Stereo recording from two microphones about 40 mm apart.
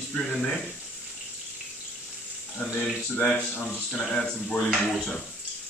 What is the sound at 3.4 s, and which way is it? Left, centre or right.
Speech, left.